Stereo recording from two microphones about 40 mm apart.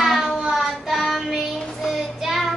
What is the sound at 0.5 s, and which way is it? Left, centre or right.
Child singing, centre.